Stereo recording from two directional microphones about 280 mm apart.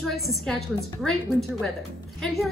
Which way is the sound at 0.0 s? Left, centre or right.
Centre.